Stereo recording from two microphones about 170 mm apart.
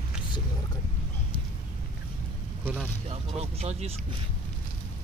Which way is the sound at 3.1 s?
35° right (ahead or behind).